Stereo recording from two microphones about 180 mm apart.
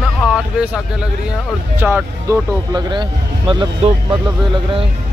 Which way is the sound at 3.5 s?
25° right (ahead or behind).